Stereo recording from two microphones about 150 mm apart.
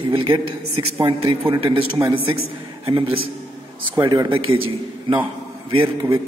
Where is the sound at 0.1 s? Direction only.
35° right (ahead or behind).